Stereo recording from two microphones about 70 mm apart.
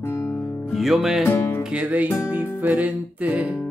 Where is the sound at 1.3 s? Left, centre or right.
Left.